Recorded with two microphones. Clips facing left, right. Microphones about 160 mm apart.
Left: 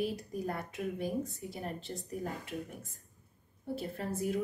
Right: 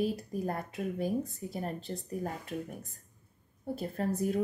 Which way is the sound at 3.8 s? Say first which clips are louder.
Right 5 dB; 40° right (ahead or behind).